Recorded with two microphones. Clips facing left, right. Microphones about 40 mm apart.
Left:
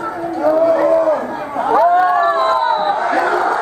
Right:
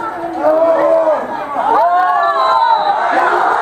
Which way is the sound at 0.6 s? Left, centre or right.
Right.